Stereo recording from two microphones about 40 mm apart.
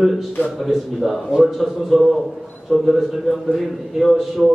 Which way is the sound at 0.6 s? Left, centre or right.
Centre.